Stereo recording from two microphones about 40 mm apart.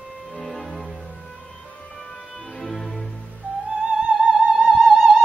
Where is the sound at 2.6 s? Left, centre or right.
Centre.